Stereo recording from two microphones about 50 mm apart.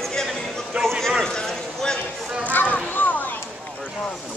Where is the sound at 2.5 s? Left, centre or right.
Left.